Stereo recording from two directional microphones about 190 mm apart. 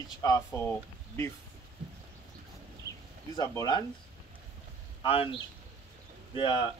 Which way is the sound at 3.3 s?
20° left (ahead or behind).